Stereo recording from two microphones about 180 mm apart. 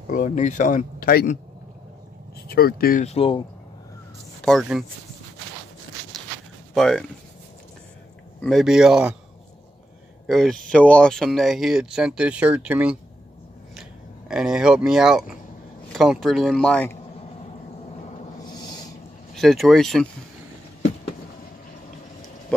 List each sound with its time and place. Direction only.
0.1 s speech: 45° left (ahead or behind)
2.4 s speech: 55° left (ahead or behind)
3.1 s speech: 30° left (ahead or behind)
4.4 s speech: centre (ahead or behind)
6.7 s speech: centre (ahead or behind)
8.4 s speech: centre (ahead or behind)
10.2 s speech: centre (ahead or behind)
18.5 s a sound: 20° left (ahead or behind)
19.3 s speech: centre (ahead or behind)
22.5 s speech: 10° left (ahead or behind)